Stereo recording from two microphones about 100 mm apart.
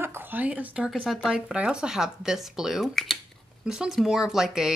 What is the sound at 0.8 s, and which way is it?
Speech, 5° right (ahead or behind).